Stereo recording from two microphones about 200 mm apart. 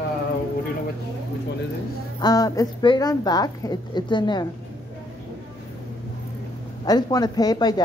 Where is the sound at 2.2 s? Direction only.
20° left (ahead or behind).